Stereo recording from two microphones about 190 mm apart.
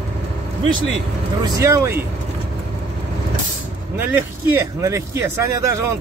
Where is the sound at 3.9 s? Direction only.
10° right (ahead or behind).